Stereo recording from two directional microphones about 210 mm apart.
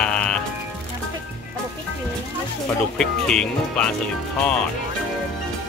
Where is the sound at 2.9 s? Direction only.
5° left (ahead or behind).